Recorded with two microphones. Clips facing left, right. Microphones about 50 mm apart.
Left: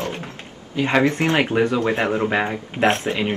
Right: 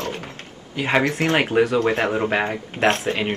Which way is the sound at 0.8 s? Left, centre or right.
Centre.